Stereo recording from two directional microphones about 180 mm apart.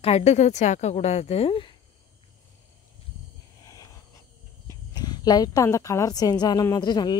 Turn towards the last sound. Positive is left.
turn(degrees=25)  # may be behind; listen again after turning